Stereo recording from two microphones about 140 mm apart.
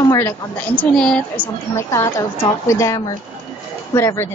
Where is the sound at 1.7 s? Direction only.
20° left (ahead or behind).